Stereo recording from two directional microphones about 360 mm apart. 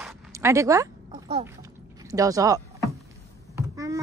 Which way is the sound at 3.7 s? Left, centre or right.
Centre.